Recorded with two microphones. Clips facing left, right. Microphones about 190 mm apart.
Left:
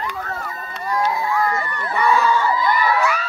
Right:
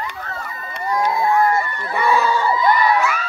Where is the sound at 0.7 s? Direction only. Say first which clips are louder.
Right 2 dB; 15° right (ahead or behind).